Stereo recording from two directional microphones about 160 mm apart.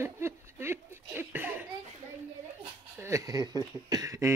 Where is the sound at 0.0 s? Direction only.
15° right (ahead or behind).